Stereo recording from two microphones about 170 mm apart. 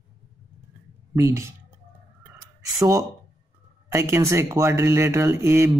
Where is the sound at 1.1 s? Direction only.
15° right (ahead or behind).